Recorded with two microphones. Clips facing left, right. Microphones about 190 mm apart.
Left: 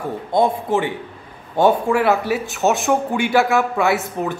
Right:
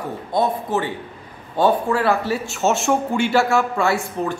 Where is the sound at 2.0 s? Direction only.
20° left (ahead or behind).